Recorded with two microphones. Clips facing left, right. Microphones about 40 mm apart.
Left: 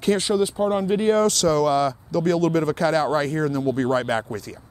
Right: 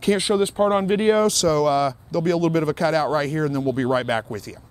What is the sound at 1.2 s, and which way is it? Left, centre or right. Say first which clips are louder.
Speech: even; centre.